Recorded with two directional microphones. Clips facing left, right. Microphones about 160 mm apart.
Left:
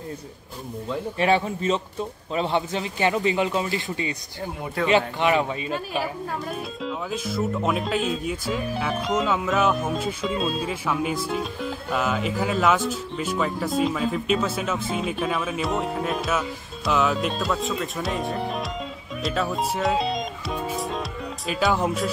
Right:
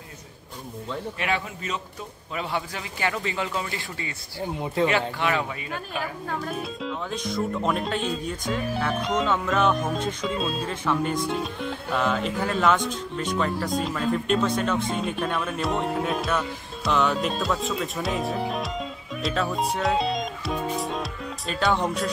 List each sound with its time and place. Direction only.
1.2 s a man's voice: 30° left (ahead or behind)
6.4 s speech: centre (ahead or behind)
19.2 s music: centre (ahead or behind)